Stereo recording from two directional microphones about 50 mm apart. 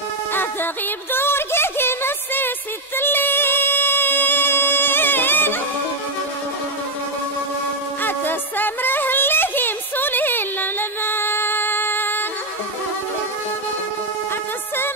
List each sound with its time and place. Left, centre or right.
0.3 s music: left
8.0 s music: left